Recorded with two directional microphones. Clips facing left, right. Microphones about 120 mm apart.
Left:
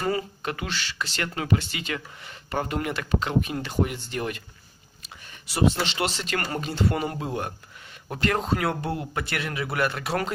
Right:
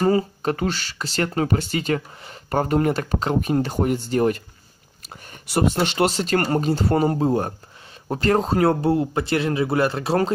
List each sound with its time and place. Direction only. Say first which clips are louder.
0.0 s speech: right 8 dB; 35° right (ahead or behind)